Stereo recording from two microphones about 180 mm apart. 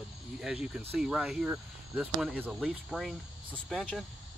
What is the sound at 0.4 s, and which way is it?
Speech, 5° right (ahead or behind).